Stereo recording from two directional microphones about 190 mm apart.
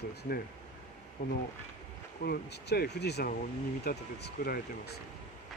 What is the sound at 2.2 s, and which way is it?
Speech, 55° left (ahead or behind).